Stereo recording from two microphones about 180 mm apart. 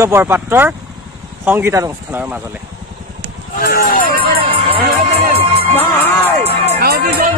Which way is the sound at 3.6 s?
55° left (ahead or behind).